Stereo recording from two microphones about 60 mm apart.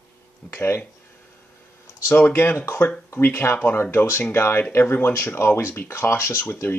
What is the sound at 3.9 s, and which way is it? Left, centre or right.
Speech, left.